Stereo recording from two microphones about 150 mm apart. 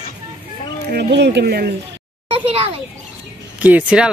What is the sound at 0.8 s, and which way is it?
Speech, 90° right.